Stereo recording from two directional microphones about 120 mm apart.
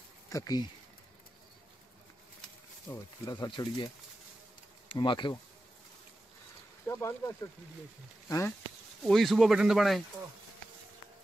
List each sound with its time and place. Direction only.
0.3 s speech: 30° left (ahead or behind)
2.9 s speech: 35° left (ahead or behind)
6.9 s speech: 25° left (ahead or behind)
9.0 s speech: centre (ahead or behind)